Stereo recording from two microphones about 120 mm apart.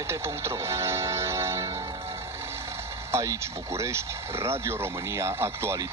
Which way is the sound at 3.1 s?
25° right (ahead or behind).